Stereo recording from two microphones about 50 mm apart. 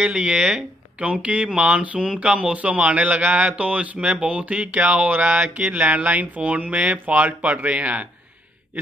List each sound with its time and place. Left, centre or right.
0.0 s speech: centre
1.2 s a man's voice: right